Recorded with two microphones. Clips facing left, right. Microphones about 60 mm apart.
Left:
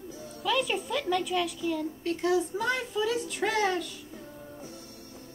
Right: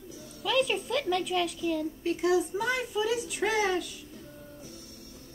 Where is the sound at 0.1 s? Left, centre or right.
Left.